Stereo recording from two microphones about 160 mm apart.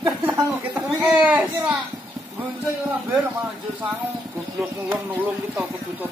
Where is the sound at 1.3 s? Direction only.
10° right (ahead or behind).